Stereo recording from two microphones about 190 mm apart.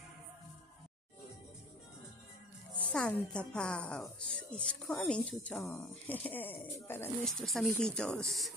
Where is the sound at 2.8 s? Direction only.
5° left (ahead or behind).